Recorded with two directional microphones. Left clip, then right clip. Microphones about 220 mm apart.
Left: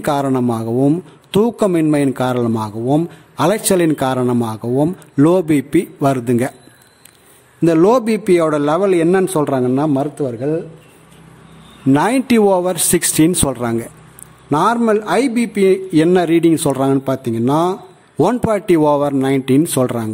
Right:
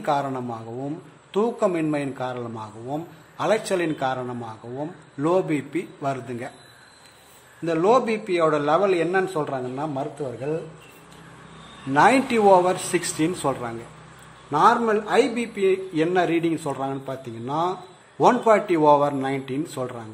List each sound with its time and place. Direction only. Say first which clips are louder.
0.0 s a man's voice: left 8 dB; 50° left (ahead or behind)
7.6 s a man's voice: left 7 dB; 50° left (ahead or behind)
11.9 s a man's voice: left 3 dB; 50° left (ahead or behind)